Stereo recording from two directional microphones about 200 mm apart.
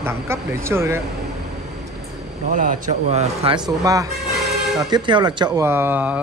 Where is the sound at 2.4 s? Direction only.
40° right (ahead or behind).